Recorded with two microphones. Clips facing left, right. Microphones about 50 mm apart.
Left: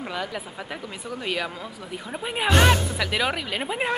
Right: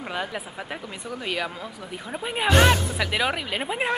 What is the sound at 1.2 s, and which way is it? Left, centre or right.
Speech, centre.